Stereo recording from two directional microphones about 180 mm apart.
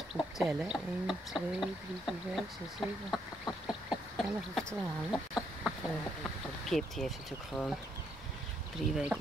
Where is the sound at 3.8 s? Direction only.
Centre (ahead or behind).